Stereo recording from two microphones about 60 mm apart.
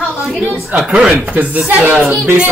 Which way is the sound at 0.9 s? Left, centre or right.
Right.